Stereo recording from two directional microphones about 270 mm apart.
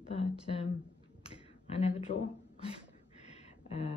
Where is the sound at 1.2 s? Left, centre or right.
Left.